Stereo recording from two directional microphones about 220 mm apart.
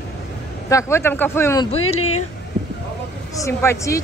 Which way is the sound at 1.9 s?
80° left.